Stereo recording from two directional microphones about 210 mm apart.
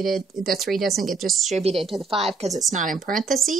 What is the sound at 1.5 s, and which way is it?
Speech, 30° right (ahead or behind).